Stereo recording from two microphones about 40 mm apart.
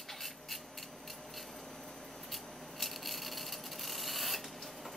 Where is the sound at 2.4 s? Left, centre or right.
Centre.